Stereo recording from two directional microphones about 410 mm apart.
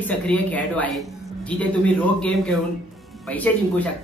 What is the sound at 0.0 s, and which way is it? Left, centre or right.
A man's voice, centre.